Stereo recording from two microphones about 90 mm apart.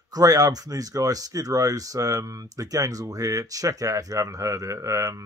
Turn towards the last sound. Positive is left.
turn(degrees=-40)  # may be behind; listen again after turning